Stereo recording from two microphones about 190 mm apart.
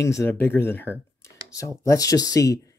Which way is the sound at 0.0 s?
15° left (ahead or behind).